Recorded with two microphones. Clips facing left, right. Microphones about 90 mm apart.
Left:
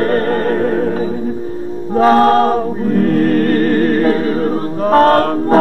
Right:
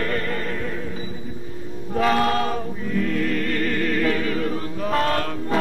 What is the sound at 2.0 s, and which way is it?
Music, 40° left (ahead or behind).